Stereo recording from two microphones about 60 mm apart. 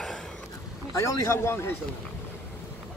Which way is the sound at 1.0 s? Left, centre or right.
Left.